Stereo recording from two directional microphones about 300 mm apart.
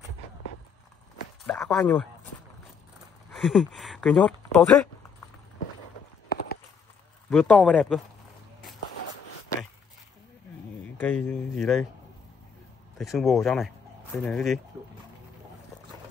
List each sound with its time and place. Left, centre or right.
1.4 s a sound: centre
3.3 s speech: centre
6.2 s clip-clop: left
7.2 s speech: centre
10.8 s a sound: centre
11.2 s speech: centre
12.9 s speech: centre